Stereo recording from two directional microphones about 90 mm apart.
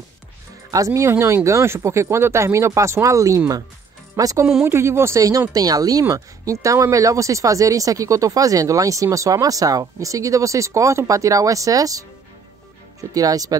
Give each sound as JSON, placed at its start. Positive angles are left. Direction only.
{"t": 0.7, "sound": "speech", "side_deg": -40}
{"t": 4.6, "sound": "a woman's voice", "side_deg": -30}
{"t": 13.1, "sound": "speech", "side_deg": -40}